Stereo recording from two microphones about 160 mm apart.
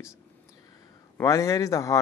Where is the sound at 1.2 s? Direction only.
20° left (ahead or behind).